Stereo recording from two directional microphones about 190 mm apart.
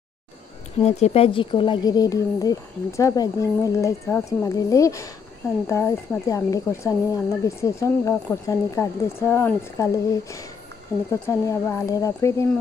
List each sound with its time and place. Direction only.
0.8 s speech: 35° left (ahead or behind); by 12.4 s 15° left (ahead or behind)